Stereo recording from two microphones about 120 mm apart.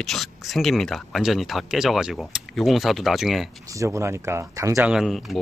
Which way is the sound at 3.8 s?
25° right (ahead or behind).